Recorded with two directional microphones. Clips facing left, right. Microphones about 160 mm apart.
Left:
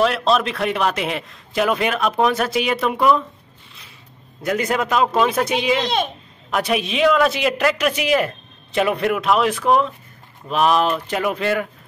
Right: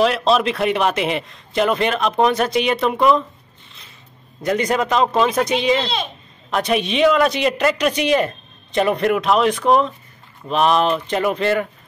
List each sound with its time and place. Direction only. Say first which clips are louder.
0.0 s a man's voice: right 2 dB; centre (ahead or behind)
4.5 s a man's voice: right 2 dB; 5° left (ahead or behind)